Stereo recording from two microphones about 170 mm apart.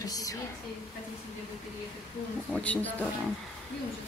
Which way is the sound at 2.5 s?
10° left (ahead or behind).